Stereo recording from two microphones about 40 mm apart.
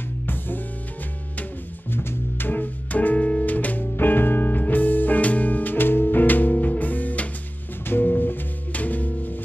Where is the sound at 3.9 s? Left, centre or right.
Left.